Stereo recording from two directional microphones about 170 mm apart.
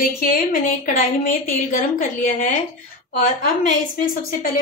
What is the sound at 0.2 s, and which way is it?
A woman's voice, 55° left (ahead or behind).